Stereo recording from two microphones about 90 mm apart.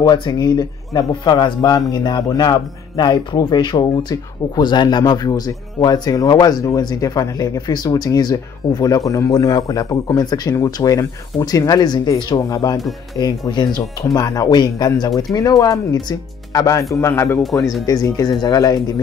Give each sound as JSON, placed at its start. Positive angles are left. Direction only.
{"t": 0.0, "sound": "speech", "side_deg": 50}
{"t": 12.4, "sound": "speech", "side_deg": 40}
{"t": 14.0, "sound": "speech", "side_deg": 40}
{"t": 14.5, "sound": "speech", "side_deg": 55}
{"t": 15.0, "sound": "speech", "side_deg": 40}
{"t": 16.9, "sound": "speech", "side_deg": 30}
{"t": 17.4, "sound": "speech", "side_deg": 0}
{"t": 17.8, "sound": "speech", "side_deg": 40}